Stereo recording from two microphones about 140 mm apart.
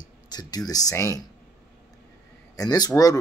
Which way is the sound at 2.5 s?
30° left (ahead or behind).